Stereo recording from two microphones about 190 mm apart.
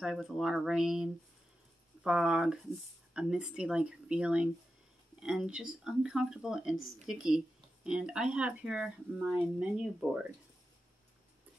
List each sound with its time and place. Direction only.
0.0 s speech: centre (ahead or behind)